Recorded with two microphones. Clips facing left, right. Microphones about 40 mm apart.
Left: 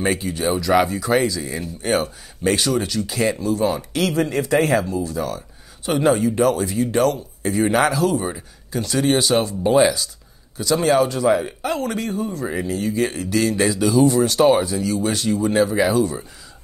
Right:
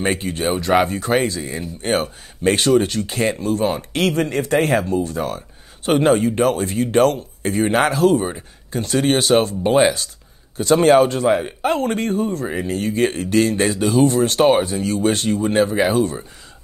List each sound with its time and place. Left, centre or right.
0.0 s speech: right
8.3 s speech: right
12.4 s speech: right